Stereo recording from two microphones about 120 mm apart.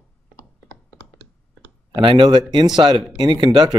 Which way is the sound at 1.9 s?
40° right (ahead or behind).